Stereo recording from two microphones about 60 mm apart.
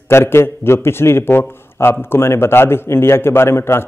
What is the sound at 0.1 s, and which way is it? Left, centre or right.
A man's voice, left.